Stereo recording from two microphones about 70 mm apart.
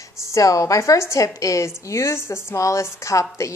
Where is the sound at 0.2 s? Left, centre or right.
Left.